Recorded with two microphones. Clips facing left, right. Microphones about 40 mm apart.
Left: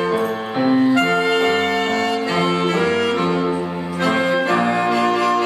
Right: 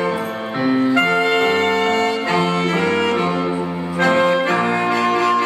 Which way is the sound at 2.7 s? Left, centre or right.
Centre.